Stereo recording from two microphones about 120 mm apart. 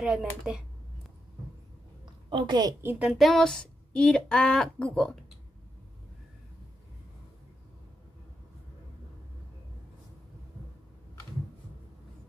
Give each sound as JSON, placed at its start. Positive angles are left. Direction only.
{"t": 0.0, "sound": "speech", "side_deg": -5}
{"t": 2.2, "sound": "a woman's voice", "side_deg": -40}
{"t": 2.8, "sound": "speech", "side_deg": -20}
{"t": 3.1, "sound": "a woman's voice", "side_deg": 0}